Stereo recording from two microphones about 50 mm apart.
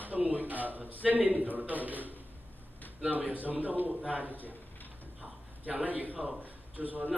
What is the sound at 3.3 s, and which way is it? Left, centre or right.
A man's voice, right.